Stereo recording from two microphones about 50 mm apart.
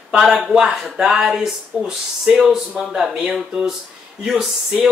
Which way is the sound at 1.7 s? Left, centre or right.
Right.